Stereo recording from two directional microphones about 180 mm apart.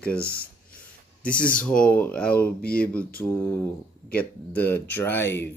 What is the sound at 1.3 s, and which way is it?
Speech, 50° left (ahead or behind).